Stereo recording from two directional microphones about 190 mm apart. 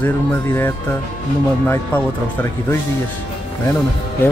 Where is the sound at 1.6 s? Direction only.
10° left (ahead or behind).